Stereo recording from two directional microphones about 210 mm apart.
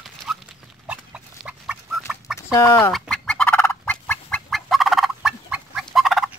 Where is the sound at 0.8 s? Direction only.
5° right (ahead or behind).